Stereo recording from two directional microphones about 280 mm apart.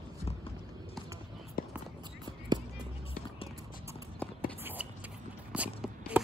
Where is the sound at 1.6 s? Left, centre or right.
Left.